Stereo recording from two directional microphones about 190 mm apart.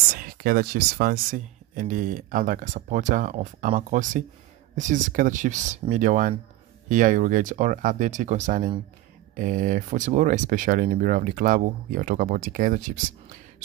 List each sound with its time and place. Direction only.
0.1 s speech: 50° right (ahead or behind)